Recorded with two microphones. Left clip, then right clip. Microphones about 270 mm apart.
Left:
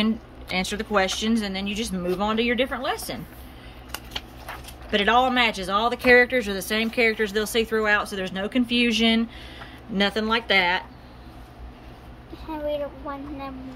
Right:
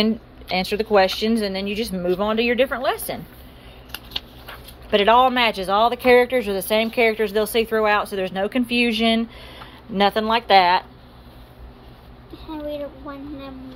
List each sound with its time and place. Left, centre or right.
0.0 s speech: centre
4.9 s speech: centre